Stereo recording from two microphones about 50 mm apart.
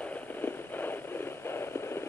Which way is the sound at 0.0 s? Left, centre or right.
Left.